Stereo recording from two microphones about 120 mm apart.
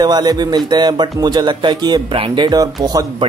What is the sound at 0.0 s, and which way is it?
A man's voice, 35° right (ahead or behind).